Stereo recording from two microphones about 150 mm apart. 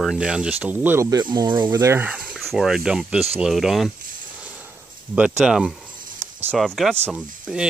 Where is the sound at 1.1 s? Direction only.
25° right (ahead or behind).